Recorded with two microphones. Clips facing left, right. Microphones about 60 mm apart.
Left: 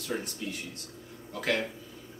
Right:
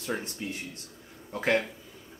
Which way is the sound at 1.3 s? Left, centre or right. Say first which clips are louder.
Right 4 dB; right.